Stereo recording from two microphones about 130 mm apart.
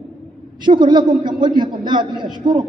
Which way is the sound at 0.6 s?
35° right (ahead or behind).